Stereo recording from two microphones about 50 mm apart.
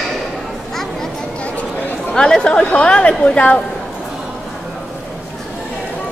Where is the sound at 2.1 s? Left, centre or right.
Centre.